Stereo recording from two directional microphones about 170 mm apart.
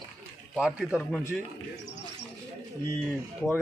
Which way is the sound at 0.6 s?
5° right (ahead or behind).